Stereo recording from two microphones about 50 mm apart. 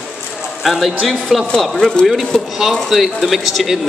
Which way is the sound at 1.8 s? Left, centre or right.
Centre.